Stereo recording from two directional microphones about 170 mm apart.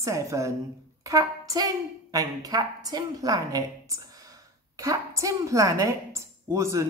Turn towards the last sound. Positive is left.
turn(degrees=-15)  # may be behind; listen again after turning